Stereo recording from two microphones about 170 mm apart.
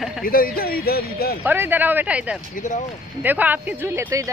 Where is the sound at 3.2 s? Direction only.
10° right (ahead or behind).